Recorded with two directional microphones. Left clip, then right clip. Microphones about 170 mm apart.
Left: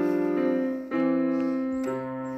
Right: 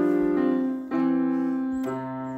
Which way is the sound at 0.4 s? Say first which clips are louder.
Right 1 dB; 30° right (ahead or behind).